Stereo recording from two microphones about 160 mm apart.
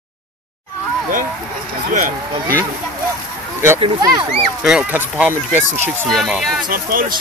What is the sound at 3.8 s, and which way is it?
Speech, 30° right (ahead or behind).